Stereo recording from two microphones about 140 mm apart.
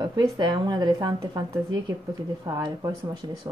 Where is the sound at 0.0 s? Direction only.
30° right (ahead or behind).